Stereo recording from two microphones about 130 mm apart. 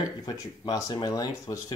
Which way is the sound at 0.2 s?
30° left (ahead or behind).